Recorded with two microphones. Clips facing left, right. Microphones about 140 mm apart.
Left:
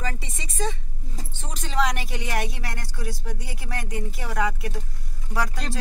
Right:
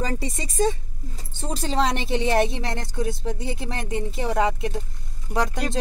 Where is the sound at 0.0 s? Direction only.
40° right (ahead or behind).